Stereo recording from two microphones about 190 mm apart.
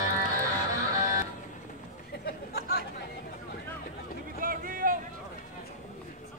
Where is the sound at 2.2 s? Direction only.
55° left (ahead or behind).